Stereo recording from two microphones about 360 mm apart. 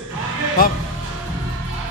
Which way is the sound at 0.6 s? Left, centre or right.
Left.